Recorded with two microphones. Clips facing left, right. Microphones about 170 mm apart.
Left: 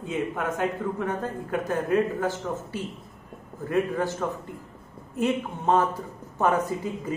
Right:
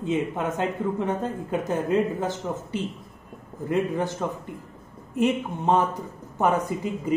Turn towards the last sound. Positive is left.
turn(degrees=-15)  # may be behind; listen again after turning